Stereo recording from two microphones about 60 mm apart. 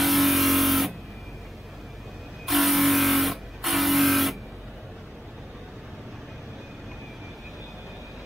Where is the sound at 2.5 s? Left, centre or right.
Centre.